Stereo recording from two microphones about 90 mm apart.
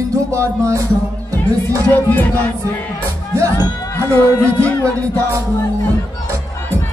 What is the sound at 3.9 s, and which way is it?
Speech, 30° left (ahead or behind).